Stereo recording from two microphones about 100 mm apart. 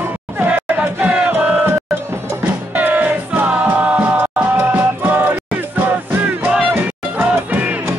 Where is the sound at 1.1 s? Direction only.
10° right (ahead or behind).